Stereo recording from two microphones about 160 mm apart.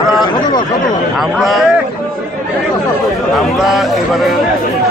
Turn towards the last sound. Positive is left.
turn(degrees=0)  # may be behind; listen again after turning